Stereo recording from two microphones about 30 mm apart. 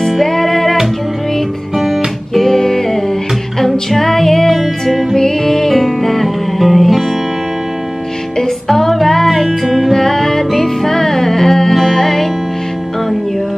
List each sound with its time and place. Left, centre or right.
0.2 s music: centre
2.3 s music: centre
4.6 s music: centre
5.1 s music: centre
6.2 s music: centre
8.4 s music: centre
9.5 s music: centre
9.8 s music: centre